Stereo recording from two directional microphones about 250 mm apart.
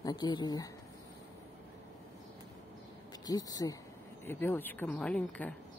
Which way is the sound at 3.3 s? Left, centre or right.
Centre.